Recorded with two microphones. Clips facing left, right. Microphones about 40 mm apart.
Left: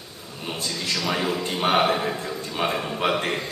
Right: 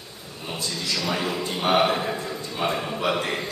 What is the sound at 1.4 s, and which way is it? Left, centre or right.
Speech, left.